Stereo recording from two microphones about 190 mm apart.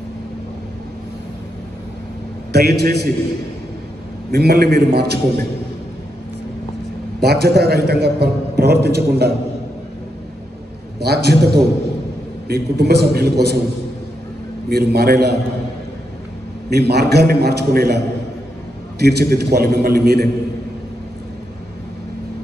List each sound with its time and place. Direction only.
2.5 s a man's voice: 60° right (ahead or behind)
4.3 s a man's voice: 60° right (ahead or behind)
7.2 s a man's voice: 60° right (ahead or behind)
11.0 s a man's voice: 60° right (ahead or behind)
14.7 s a man's voice: 55° right (ahead or behind)
16.7 s a man's voice: 60° right (ahead or behind)